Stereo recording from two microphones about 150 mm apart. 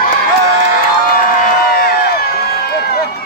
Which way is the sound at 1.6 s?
85° left.